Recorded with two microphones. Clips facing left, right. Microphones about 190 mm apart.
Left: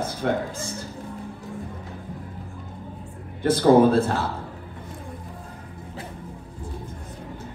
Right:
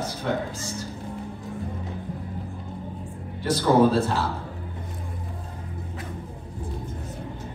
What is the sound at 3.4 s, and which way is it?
Speech, 55° left (ahead or behind).